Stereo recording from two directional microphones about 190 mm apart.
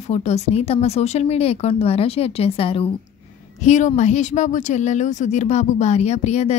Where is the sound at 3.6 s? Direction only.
40° left (ahead or behind).